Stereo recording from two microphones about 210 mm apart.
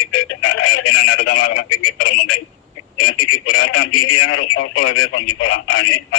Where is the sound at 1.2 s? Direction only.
80° left.